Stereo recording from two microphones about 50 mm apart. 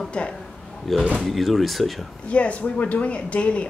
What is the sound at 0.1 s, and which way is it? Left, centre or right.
Speech, left.